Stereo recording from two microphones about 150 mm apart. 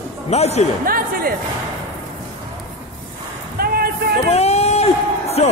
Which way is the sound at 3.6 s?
85° right.